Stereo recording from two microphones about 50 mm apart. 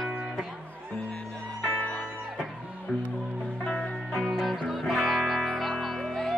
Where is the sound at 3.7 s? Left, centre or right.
Centre.